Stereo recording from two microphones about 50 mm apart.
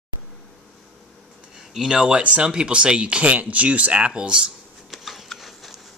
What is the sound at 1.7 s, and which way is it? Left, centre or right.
Speech, centre.